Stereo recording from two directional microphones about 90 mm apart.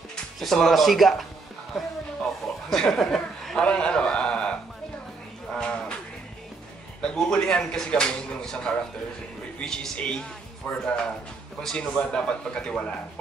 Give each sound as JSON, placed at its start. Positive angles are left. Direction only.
{"t": 0.1, "sound": "speech", "side_deg": 5}
{"t": 1.7, "sound": "chuckle", "side_deg": 5}
{"t": 3.6, "sound": "a man's voice", "side_deg": 10}
{"t": 5.5, "sound": "a sound", "side_deg": 10}
{"t": 7.0, "sound": "speech", "side_deg": 10}